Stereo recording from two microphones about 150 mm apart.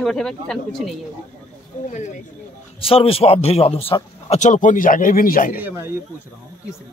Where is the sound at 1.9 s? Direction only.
55° left (ahead or behind).